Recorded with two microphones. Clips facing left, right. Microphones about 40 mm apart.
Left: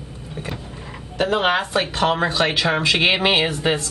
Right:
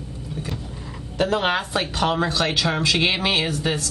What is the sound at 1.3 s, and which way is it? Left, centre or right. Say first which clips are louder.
Speech: left 4 dB; centre.